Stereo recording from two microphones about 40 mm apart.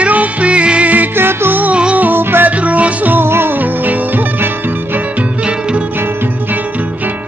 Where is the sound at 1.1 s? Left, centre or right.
Right.